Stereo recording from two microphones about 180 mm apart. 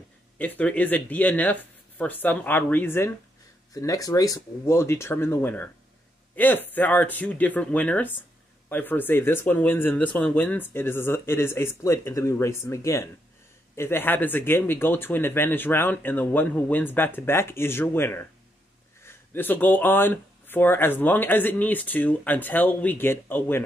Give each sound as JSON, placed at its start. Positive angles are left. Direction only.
{"t": 0.4, "sound": "speech", "side_deg": 10}